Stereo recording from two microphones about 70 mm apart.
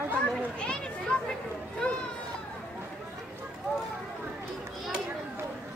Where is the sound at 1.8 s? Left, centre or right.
Centre.